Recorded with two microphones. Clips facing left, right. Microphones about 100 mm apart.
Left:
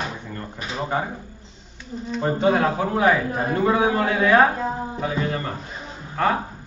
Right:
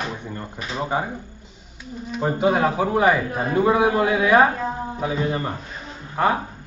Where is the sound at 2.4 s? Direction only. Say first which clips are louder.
Right 1 dB; 10° right (ahead or behind).